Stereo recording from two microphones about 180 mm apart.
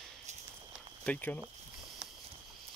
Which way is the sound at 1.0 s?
10° left (ahead or behind).